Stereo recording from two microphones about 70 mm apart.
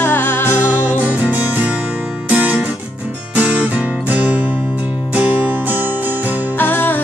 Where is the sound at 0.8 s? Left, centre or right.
Right.